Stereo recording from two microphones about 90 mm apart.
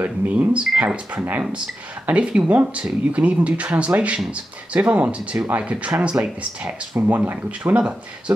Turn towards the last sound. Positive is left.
turn(degrees=-15)  # may be behind; listen again after turning